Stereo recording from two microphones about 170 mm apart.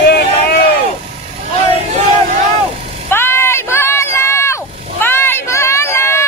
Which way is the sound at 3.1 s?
15° left (ahead or behind).